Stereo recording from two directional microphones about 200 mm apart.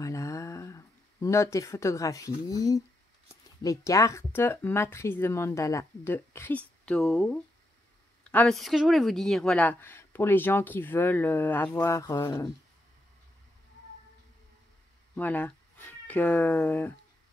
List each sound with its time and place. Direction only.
0.0 s a sound: 15° left (ahead or behind)
3.6 s speech: 15° left (ahead or behind)
15.1 s speech: 10° left (ahead or behind)